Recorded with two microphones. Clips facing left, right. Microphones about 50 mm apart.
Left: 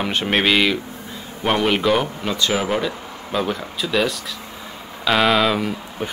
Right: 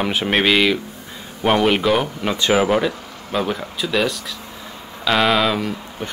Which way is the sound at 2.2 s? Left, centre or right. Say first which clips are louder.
Right 4 dB; right.